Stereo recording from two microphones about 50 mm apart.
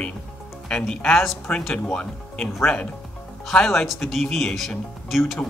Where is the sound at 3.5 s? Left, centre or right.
Centre.